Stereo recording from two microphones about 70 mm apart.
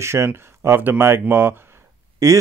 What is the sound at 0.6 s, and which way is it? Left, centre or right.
Speech, right.